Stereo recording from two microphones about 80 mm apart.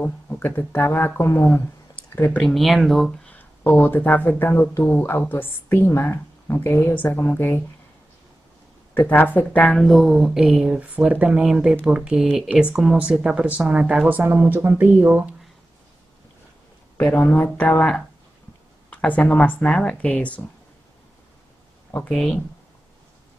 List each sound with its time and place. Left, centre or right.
0.0 s a woman's voice: left
2.4 s speech: centre
3.3 s a woman's voice: left
8.9 s a woman's voice: left
9.7 s speech: centre
16.9 s a woman's voice: left
22.1 s speech: centre